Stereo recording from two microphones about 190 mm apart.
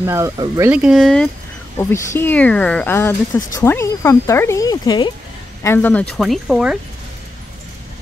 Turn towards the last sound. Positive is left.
turn(degrees=0)  # may be behind; listen again after turning